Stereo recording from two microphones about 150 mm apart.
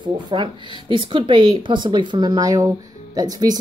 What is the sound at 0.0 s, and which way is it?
Speech, 30° right (ahead or behind).